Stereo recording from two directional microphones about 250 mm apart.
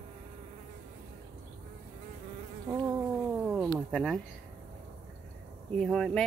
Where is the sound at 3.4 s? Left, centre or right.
Centre.